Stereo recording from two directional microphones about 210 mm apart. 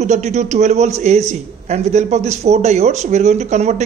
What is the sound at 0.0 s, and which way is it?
Speech, 35° right (ahead or behind).